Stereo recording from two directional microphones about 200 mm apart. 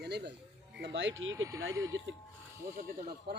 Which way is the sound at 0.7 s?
60° right (ahead or behind).